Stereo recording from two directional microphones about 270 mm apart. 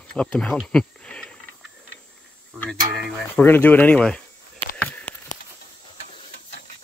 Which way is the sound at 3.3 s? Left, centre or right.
Centre.